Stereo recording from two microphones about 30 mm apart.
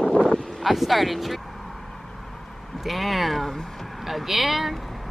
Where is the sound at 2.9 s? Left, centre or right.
Centre.